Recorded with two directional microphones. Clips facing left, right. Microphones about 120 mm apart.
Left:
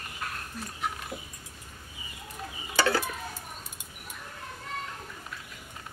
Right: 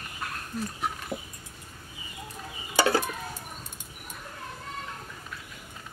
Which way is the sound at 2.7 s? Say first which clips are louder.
Right 2 dB; 15° right (ahead or behind).